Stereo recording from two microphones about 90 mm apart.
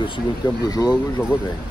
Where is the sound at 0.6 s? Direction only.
45° left (ahead or behind).